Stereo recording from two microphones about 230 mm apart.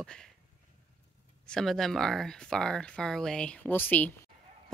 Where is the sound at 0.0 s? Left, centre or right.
Centre.